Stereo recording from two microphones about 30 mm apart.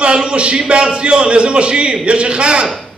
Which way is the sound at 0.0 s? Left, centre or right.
Right.